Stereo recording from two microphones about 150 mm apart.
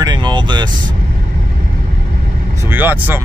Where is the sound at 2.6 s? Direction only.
15° right (ahead or behind).